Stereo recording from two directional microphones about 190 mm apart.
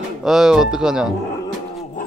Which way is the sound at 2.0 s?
45° left (ahead or behind).